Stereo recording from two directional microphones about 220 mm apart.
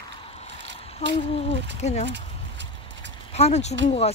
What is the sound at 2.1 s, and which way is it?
Clip-clop, 55° right (ahead or behind).